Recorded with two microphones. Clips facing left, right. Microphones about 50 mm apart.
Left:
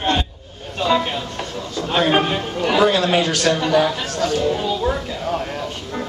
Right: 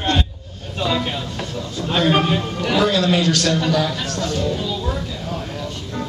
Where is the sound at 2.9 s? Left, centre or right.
Left.